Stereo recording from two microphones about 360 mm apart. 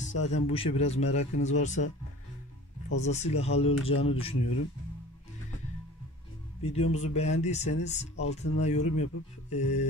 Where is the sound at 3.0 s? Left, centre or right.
Centre.